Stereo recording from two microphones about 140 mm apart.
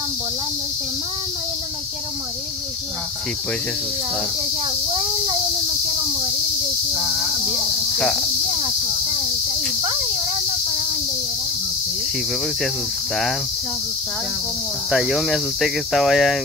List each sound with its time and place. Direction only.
6.9 s cricket: 15° right (ahead or behind)
8.0 s speech: 5° left (ahead or behind)
14.9 s speech: centre (ahead or behind)